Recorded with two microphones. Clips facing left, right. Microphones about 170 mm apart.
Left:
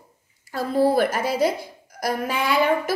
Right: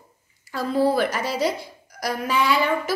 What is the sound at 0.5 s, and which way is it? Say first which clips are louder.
A woman's voice: left 1 dB; 50° left (ahead or behind).